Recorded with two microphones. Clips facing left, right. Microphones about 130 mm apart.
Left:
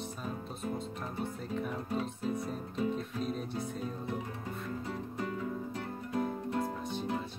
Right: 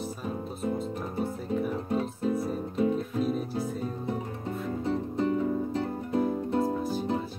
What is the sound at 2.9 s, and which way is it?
Music, 5° right (ahead or behind).